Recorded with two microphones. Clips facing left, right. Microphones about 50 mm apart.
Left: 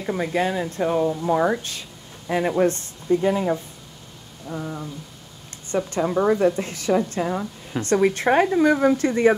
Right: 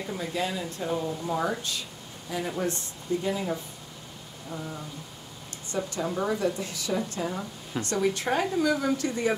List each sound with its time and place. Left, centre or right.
0.0 s speech: left
2.2 s speech: left
5.7 s speech: left